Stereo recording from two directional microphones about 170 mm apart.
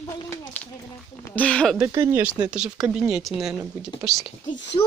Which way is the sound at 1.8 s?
15° right (ahead or behind).